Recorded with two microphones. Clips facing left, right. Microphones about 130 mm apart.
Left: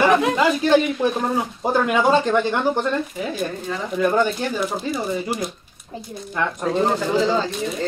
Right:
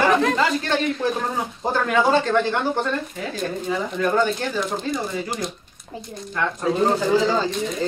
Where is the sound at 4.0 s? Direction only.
15° left (ahead or behind).